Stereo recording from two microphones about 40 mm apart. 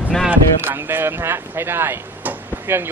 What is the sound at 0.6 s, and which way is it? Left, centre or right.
Speech, right.